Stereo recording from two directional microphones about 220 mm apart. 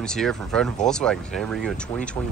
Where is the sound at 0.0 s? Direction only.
Centre (ahead or behind).